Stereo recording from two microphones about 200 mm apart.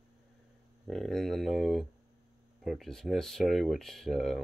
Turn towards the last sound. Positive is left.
turn(degrees=0)  # may be behind; listen again after turning